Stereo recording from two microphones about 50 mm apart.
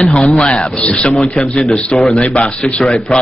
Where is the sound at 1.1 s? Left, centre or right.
Centre.